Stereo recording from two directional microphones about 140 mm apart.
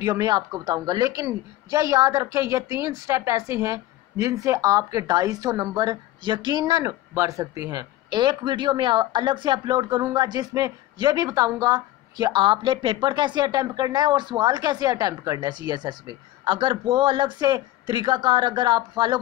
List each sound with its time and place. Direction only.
0.0 s a woman's voice: 30° right (ahead or behind)